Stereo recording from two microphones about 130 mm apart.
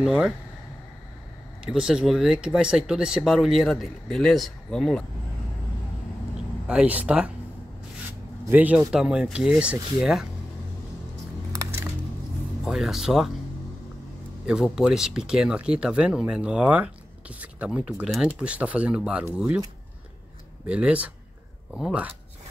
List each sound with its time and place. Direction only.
0.0 s speech: 5° right (ahead or behind)
1.6 s speech: 5° right (ahead or behind)
6.7 s speech: 10° right (ahead or behind)
8.5 s speech: 10° right (ahead or behind)
11.5 s music: 20° right (ahead or behind)
12.6 s speech: 5° right (ahead or behind)
14.4 s speech: 5° right (ahead or behind)
20.6 s speech: 10° right (ahead or behind)